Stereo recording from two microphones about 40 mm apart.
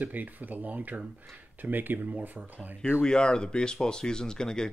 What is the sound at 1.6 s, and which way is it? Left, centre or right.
Speech, right.